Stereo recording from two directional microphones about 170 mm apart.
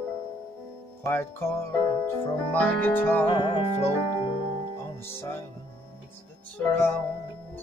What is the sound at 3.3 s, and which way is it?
Music, 30° left (ahead or behind).